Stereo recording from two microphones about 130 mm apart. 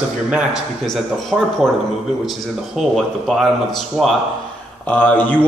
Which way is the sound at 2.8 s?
Centre (ahead or behind).